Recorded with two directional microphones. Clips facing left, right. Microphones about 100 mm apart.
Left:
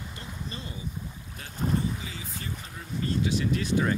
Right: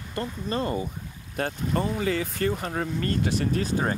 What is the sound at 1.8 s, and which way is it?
Speech, 65° right (ahead or behind).